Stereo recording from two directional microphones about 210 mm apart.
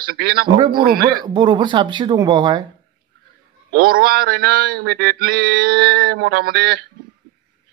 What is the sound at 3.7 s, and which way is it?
A man's voice, 45° right (ahead or behind).